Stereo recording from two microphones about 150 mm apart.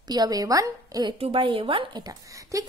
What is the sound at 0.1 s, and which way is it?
A woman's voice, 25° right (ahead or behind).